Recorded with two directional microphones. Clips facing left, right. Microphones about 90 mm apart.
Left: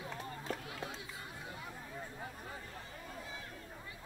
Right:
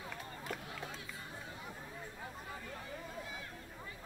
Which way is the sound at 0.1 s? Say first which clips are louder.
Left 2 dB; 35° left (ahead or behind).